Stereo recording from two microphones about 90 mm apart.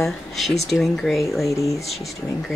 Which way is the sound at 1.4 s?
35° left (ahead or behind).